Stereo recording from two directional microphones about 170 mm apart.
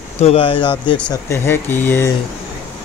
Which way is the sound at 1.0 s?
15° left (ahead or behind).